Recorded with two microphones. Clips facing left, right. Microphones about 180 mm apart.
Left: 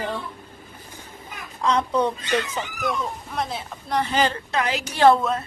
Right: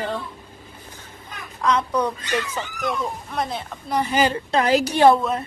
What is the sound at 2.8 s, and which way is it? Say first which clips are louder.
A woman's voice: right 1 dB; centre (ahead or behind).